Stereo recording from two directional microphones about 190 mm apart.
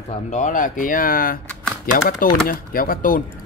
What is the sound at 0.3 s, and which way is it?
Speech, 40° left (ahead or behind).